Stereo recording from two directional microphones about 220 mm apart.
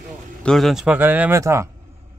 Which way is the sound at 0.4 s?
Centre (ahead or behind).